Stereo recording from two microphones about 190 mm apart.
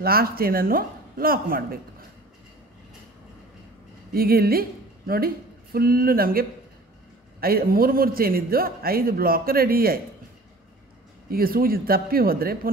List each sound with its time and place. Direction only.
0.0 s a man's voice: 50° right (ahead or behind)
4.1 s a man's voice: 50° right (ahead or behind)
11.2 s a man's voice: 50° right (ahead or behind)